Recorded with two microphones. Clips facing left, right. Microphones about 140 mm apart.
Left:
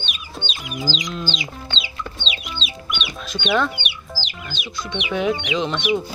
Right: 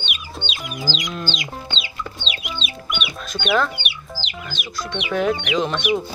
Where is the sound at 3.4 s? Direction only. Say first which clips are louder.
Even; 5° right (ahead or behind).